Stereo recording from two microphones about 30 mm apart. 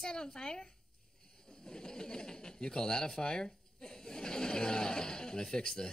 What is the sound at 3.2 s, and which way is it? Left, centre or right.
Sewing machine, left.